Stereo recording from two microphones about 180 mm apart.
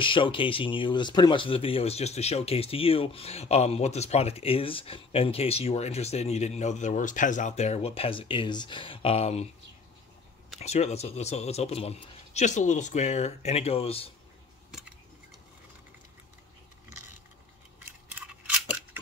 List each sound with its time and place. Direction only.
0.0 s speech: 30° left (ahead or behind)
10.6 s speech: 40° left (ahead or behind)
17.8 s scissors: 10° right (ahead or behind)